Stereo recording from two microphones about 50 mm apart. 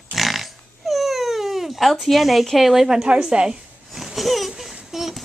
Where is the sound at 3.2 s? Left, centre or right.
Centre.